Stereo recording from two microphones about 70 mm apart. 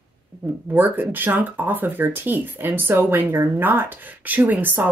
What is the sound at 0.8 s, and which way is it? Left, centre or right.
Speech, right.